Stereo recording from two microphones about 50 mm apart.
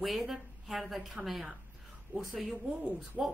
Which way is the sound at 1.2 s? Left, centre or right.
Right.